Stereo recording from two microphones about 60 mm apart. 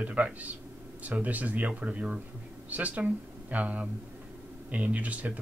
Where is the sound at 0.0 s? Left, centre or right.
Right.